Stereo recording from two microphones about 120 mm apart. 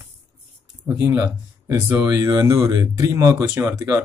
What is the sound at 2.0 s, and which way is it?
Speech, 25° right (ahead or behind).